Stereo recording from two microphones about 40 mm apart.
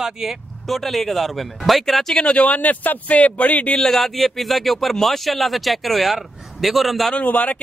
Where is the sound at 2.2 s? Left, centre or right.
Left.